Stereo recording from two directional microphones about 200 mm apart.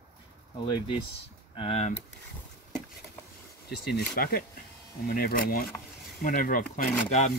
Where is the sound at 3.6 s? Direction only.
55° left (ahead or behind).